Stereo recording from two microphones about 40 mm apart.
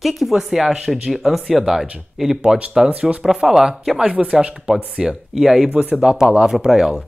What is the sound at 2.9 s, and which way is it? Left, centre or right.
Speech, right.